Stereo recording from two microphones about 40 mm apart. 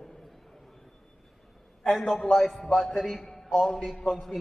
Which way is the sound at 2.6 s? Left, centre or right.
Centre.